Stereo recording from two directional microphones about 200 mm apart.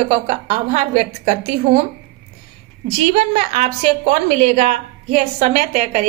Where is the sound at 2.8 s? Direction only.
30° right (ahead or behind).